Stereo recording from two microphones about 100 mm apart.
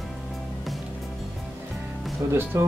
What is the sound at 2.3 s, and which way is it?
Speech, 25° right (ahead or behind).